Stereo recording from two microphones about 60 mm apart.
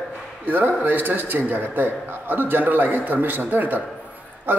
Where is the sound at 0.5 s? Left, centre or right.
Right.